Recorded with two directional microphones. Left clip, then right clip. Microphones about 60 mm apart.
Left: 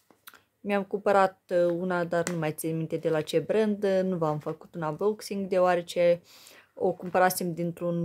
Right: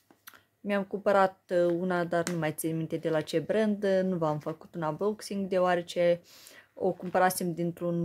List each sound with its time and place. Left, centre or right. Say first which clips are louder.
0.7 s speech: left 2 dB; left
4.5 s speech: left 1 dB; centre
4.9 s speech: left 3 dB; centre